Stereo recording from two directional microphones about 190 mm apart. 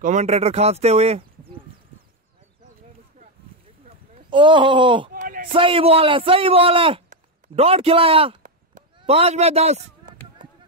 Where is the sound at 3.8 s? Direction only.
30° right (ahead or behind).